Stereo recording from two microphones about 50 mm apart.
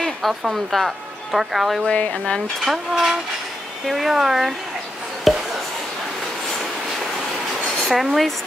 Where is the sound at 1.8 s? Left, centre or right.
Left.